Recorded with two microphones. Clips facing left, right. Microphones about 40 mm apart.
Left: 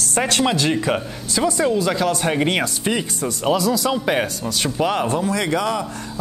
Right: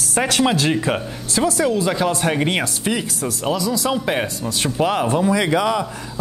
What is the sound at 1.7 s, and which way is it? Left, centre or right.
Speech, centre.